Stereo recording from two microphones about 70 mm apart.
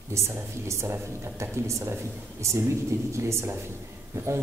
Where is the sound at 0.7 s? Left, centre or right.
Right.